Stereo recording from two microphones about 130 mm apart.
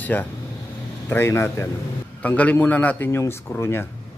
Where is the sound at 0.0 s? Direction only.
15° left (ahead or behind).